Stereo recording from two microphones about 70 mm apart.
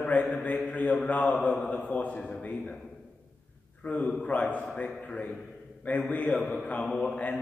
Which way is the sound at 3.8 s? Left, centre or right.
Left.